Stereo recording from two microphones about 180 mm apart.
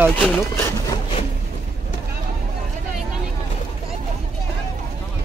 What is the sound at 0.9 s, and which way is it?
Wood, 30° left (ahead or behind).